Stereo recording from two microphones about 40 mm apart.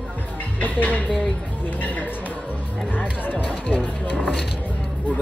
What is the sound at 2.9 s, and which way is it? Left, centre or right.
Speech, left.